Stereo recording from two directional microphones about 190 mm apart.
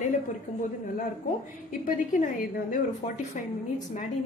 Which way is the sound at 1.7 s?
45° left (ahead or behind).